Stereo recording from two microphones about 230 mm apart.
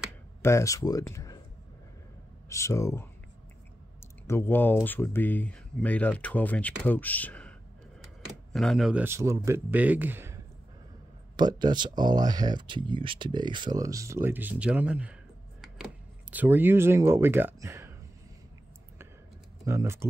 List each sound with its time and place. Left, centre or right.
0.4 s speech: centre
2.5 s speech: centre
4.3 s speech: centre
8.5 s speech: centre
15.6 s a sound: centre
19.6 s speech: centre